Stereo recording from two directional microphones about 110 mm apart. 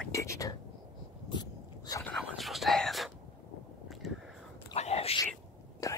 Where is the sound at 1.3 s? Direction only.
35° left (ahead or behind).